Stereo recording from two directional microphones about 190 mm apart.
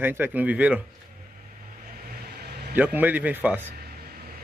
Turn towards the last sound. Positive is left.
turn(degrees=-10)  # may be behind; listen again after turning